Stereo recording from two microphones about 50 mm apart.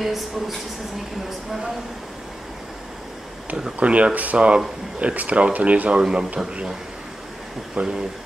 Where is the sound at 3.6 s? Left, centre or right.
Right.